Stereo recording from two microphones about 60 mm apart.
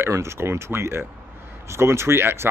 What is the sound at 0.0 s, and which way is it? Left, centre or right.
Speech, right.